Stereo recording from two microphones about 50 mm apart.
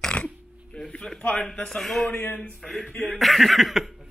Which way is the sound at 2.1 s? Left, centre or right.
Left.